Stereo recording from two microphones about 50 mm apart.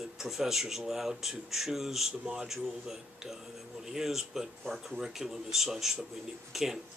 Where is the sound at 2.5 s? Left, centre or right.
Centre.